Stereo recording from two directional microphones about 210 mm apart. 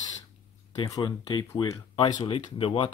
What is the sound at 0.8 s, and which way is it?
Speech, 20° left (ahead or behind).